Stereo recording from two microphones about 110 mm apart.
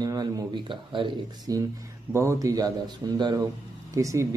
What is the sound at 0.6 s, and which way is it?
Speech, 50° right (ahead or behind).